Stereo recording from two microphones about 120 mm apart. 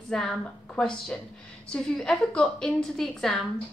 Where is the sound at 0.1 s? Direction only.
5° left (ahead or behind).